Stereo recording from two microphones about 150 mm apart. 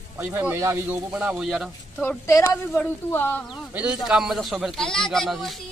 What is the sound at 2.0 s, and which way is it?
A woman's voice, 15° left (ahead or behind).